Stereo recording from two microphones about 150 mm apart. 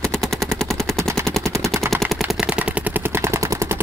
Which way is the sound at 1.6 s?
20° right (ahead or behind).